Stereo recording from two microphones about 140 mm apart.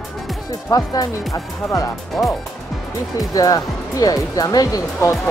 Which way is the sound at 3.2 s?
25° left (ahead or behind).